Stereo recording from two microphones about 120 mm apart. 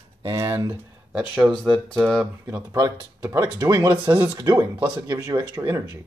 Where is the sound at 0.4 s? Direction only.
30° right (ahead or behind).